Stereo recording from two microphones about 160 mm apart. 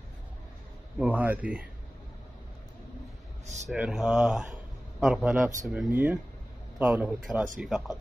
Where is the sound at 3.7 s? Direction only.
5° right (ahead or behind).